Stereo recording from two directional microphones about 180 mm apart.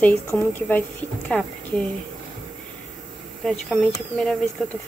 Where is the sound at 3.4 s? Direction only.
Centre (ahead or behind).